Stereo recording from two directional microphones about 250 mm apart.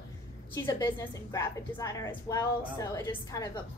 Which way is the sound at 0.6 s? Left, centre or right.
Centre.